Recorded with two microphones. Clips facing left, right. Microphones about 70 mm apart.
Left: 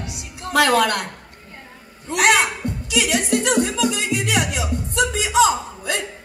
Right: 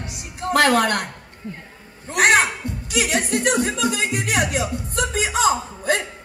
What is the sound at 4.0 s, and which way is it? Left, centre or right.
Music, right.